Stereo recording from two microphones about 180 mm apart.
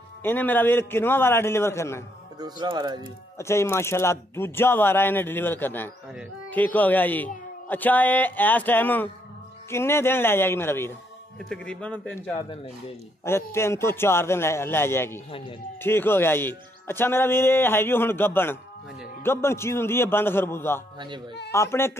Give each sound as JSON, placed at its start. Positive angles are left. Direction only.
{"t": 0.2, "sound": "speech", "side_deg": 10}
{"t": 2.3, "sound": "speech", "side_deg": -25}
{"t": 3.3, "sound": "a man's voice", "side_deg": 15}